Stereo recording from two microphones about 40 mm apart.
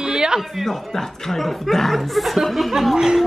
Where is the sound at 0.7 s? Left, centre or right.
Centre.